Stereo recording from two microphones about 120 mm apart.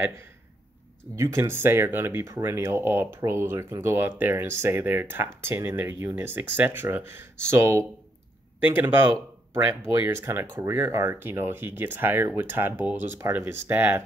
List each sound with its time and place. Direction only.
1.1 s speech: 20° right (ahead or behind)